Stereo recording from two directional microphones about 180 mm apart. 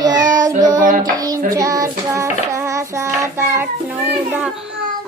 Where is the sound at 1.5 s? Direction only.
20° right (ahead or behind).